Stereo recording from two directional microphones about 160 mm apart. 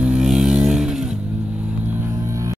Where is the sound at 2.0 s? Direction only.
20° right (ahead or behind).